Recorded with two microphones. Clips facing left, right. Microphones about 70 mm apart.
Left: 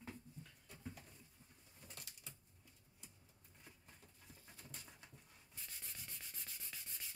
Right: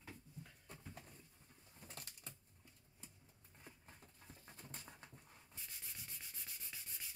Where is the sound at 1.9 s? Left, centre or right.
Right.